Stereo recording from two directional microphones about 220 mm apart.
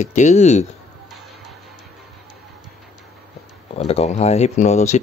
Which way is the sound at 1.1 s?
Centre (ahead or behind).